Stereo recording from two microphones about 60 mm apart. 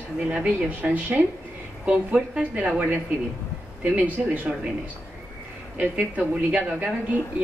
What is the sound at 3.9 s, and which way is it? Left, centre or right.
Speech, right.